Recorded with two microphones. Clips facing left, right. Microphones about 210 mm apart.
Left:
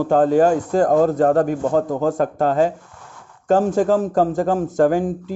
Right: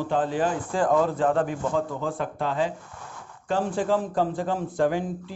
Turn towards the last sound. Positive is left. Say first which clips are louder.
# left 7 dB
turn(degrees=45)  # may be behind; listen again after turning